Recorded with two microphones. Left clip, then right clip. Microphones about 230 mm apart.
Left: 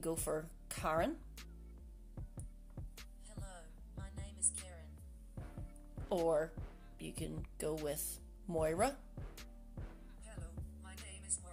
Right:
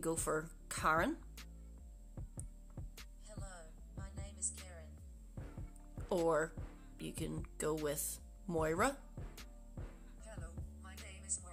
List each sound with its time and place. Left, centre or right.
0.0 s speech: centre
2.1 s music: centre
6.2 s speech: centre
9.8 s music: centre